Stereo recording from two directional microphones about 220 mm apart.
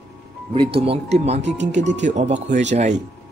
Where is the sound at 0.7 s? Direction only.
30° right (ahead or behind).